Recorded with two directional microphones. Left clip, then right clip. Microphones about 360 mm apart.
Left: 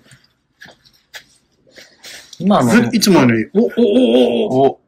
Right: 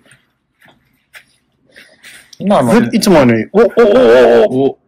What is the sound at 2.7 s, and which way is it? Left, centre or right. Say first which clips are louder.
Speech: right 3 dB; centre.